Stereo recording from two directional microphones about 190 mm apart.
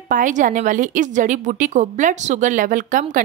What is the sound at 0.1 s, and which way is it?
A woman's voice, 45° right (ahead or behind).